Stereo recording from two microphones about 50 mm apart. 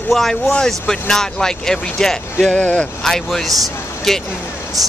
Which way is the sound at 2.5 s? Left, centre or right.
Left.